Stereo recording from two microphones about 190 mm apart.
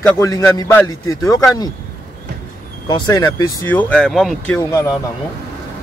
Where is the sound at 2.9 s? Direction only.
20° left (ahead or behind).